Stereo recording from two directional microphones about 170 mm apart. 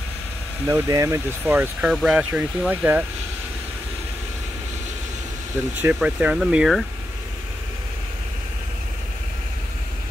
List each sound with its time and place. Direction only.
0.7 s speech: 20° right (ahead or behind)
5.8 s speech: 10° right (ahead or behind)